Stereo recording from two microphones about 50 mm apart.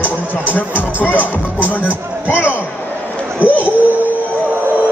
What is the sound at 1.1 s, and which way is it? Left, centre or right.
Speech, left.